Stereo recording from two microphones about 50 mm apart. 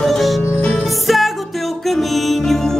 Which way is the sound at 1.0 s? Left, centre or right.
Centre.